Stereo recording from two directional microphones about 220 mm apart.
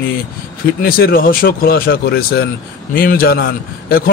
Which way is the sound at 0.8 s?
40° left (ahead or behind).